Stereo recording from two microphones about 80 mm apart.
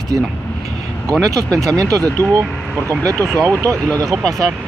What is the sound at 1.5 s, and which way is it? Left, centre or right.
Speech, centre.